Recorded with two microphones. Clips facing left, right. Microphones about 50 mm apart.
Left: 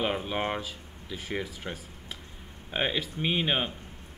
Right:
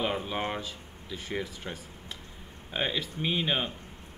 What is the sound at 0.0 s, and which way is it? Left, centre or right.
Speech, centre.